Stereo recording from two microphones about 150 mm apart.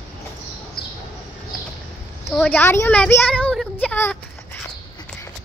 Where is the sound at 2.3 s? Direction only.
10° left (ahead or behind).